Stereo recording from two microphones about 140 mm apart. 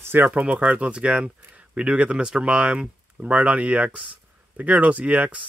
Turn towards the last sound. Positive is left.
turn(degrees=-10)  # may be behind; listen again after turning